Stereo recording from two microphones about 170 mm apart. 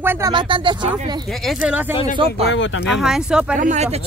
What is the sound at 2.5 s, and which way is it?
Speech, 90° left.